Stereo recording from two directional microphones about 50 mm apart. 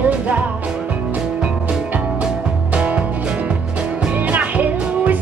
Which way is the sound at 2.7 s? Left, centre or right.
Right.